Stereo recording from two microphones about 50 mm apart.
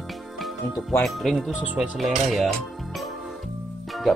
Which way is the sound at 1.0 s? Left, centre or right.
Centre.